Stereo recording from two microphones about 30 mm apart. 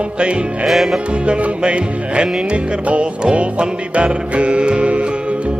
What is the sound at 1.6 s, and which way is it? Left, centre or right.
Music, right.